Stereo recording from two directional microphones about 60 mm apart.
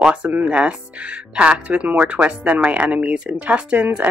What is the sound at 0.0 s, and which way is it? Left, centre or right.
A woman's voice, centre.